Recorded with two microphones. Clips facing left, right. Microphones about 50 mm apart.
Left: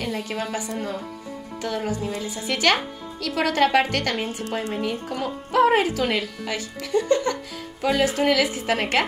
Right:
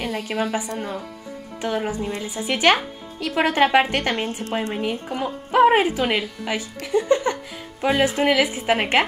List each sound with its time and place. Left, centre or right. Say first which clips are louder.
0.0 s speech: right 3 dB; centre